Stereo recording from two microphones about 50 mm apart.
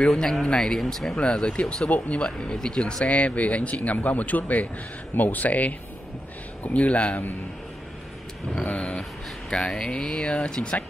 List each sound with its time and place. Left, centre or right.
0.0 s speech: centre
8.5 s speech: left